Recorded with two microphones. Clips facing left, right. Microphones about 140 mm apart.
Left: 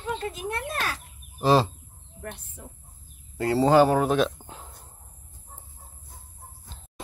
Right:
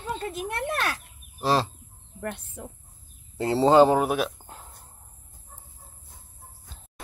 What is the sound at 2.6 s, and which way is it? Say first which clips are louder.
Speech: right 5 dB; 75° right (ahead or behind).